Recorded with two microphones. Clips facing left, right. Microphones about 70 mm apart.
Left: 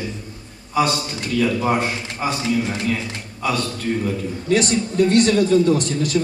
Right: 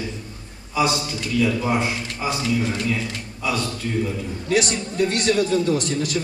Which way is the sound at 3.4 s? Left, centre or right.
Left.